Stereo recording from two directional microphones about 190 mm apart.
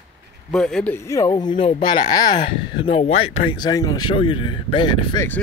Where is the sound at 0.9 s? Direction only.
15° left (ahead or behind).